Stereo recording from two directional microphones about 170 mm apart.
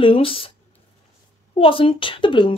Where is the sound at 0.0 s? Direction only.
30° left (ahead or behind).